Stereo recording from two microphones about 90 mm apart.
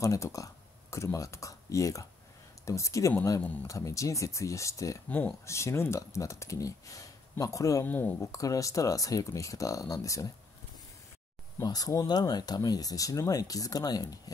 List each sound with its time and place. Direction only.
0.0 s speech: 35° left (ahead or behind)
7.8 s speech: 20° left (ahead or behind)
8.2 s speech: 35° left (ahead or behind)
11.6 s speech: 45° left (ahead or behind)